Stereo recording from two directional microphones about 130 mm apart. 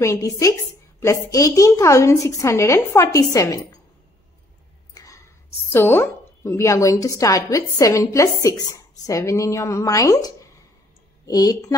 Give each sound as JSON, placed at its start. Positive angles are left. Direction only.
{"t": 0.0, "sound": "a woman's voice", "side_deg": 25}
{"t": 4.9, "sound": "whispering", "side_deg": 25}
{"t": 5.7, "sound": "a woman's voice", "side_deg": 20}